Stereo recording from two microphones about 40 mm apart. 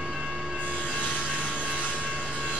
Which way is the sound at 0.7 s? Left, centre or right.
Left.